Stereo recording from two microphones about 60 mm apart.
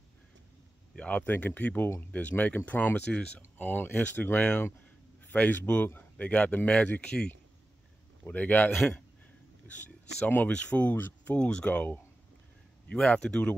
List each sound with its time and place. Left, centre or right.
0.9 s speech: left
8.6 s speech: centre
9.6 s speech: left
12.9 s speech: centre